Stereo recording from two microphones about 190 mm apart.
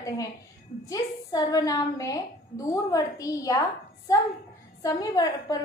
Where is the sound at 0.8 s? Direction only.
20° left (ahead or behind).